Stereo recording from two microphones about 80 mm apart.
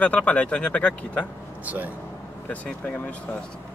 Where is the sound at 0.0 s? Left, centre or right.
Centre.